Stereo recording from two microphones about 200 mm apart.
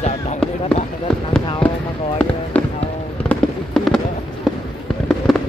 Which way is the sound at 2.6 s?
5° left (ahead or behind).